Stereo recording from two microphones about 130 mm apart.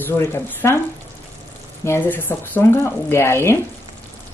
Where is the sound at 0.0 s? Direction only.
15° left (ahead or behind).